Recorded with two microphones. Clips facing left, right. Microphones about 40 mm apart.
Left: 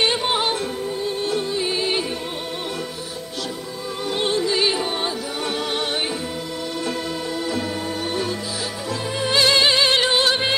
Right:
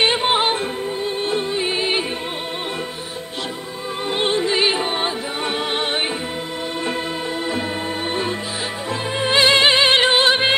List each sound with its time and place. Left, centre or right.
0.0 s music: right
4.1 s music: right
8.1 s music: right